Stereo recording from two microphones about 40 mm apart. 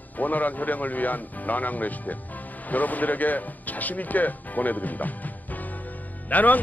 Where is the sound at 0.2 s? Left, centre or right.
Left.